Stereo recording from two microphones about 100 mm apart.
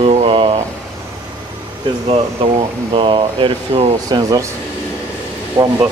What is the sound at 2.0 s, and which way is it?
Speech, 75° right (ahead or behind).